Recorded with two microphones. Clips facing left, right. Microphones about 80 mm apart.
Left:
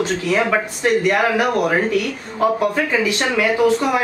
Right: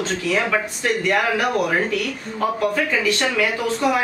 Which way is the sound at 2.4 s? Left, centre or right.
Centre.